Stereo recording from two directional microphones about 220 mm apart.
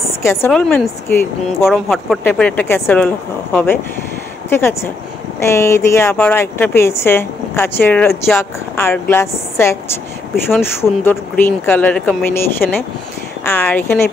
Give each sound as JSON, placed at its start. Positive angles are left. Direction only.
{"t": 0.2, "sound": "speech", "side_deg": 10}
{"t": 13.5, "sound": "speech", "side_deg": 5}